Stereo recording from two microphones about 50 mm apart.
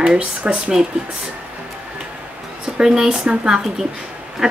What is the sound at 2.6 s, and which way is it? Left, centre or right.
Speech, centre.